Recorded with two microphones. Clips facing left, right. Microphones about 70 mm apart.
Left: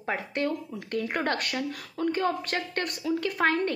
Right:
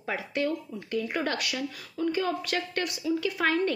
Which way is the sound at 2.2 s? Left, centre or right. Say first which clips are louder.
Left 1 dB; left.